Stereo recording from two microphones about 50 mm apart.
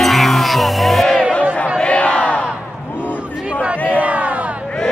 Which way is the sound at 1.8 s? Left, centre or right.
Left.